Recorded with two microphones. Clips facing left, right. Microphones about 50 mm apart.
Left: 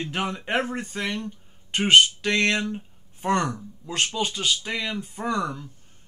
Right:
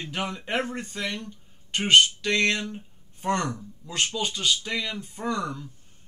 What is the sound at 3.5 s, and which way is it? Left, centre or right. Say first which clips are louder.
Speech: left 2 dB; centre.